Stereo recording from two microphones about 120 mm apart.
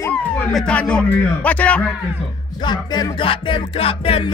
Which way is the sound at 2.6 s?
35° left (ahead or behind).